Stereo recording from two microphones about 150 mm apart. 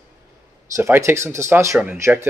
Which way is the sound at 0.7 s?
20° right (ahead or behind).